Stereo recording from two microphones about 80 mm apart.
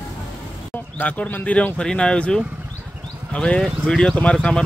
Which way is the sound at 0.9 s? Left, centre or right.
Centre.